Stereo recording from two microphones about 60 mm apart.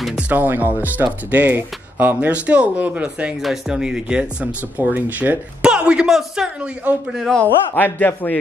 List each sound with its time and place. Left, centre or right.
0.3 s speech: right
2.2 s speech: right
3.3 s speech: centre
4.9 s speech: right
5.6 s speech: centre
7.4 s a man's voice: left